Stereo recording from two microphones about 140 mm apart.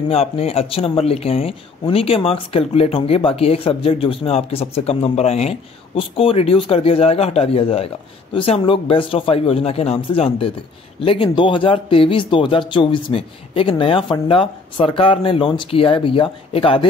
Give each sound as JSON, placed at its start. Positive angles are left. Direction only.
{"t": 0.1, "sound": "speech", "side_deg": 50}